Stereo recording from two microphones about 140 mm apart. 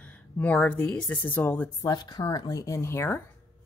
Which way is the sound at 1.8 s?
30° left (ahead or behind).